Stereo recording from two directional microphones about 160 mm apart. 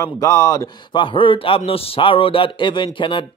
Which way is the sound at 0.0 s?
20° left (ahead or behind).